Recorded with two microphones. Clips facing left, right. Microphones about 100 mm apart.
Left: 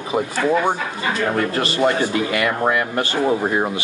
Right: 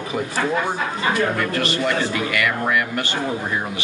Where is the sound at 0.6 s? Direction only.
25° left (ahead or behind).